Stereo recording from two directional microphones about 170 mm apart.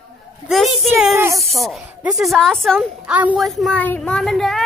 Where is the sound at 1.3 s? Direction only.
Centre (ahead or behind).